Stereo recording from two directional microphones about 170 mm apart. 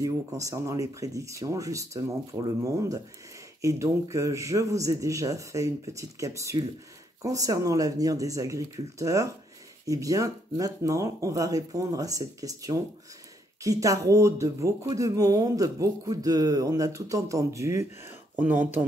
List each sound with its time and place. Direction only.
0.0 s speech: 20° right (ahead or behind)